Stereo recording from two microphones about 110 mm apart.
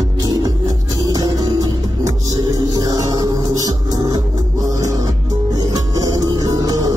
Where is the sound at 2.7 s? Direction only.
35° right (ahead or behind).